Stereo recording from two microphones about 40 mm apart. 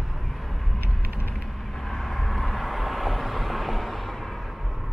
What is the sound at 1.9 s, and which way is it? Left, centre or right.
Vehicle, centre.